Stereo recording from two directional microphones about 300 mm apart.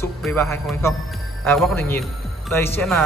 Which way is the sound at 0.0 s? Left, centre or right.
Centre.